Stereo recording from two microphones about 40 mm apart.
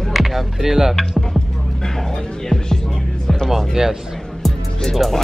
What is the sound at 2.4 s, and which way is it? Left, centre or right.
Music, centre.